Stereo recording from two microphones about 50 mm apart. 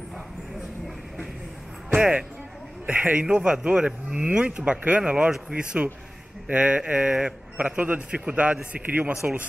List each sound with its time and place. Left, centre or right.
2.9 s speech: right